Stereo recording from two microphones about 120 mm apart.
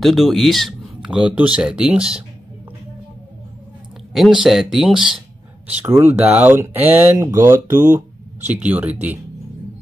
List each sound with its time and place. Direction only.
0.0 s speech: centre (ahead or behind)
4.1 s speech: 5° right (ahead or behind); by 7.6 s 25° right (ahead or behind)
7.6 s a sound: 90° right
8.5 s speech: 10° right (ahead or behind)